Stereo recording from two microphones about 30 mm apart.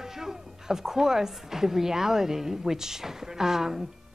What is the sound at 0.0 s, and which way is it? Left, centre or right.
A woman's voice, centre.